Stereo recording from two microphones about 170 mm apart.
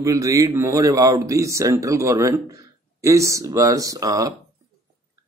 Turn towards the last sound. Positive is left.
turn(degrees=-20)  # may be behind; listen again after turning